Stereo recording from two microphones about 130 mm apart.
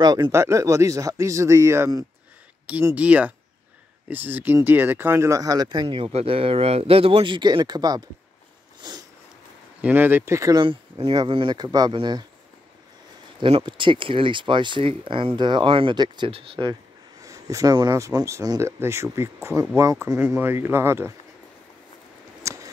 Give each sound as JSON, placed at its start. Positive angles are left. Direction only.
{"t": 0.0, "sound": "speech", "side_deg": -35}
{"t": 0.3, "sound": "speech", "side_deg": -20}
{"t": 2.9, "sound": "speech", "side_deg": -10}
{"t": 8.8, "sound": "a sound", "side_deg": -35}
{"t": 9.8, "sound": "speech", "side_deg": -15}
{"t": 10.6, "sound": "speech", "side_deg": -45}
{"t": 13.4, "sound": "speech", "side_deg": -40}
{"t": 17.2, "sound": "speech", "side_deg": -25}
{"t": 22.4, "sound": "a sound", "side_deg": -25}